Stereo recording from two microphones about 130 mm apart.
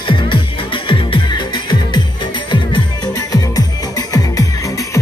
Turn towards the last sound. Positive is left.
turn(degrees=30)  # may be behind; listen again after turning